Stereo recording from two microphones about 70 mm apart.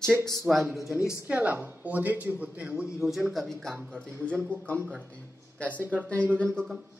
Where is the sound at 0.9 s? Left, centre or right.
Centre.